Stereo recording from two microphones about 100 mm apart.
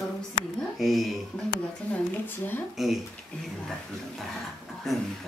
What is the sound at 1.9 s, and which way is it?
Speech, 15° left (ahead or behind).